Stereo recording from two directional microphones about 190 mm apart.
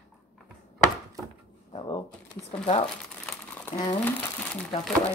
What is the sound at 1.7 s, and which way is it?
Shuffling cards, 25° left (ahead or behind).